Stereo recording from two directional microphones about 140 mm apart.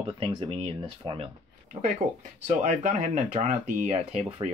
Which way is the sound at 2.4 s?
60° right (ahead or behind).